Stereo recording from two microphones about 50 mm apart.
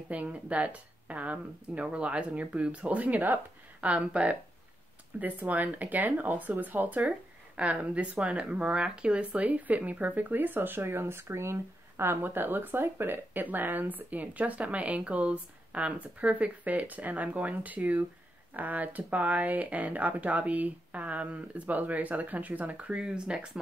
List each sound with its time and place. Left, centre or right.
0.1 s speech: right